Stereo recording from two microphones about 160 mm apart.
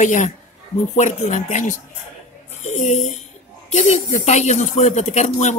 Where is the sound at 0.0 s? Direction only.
50° left (ahead or behind).